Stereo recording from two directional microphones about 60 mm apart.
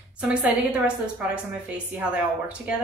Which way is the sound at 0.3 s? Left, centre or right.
Centre.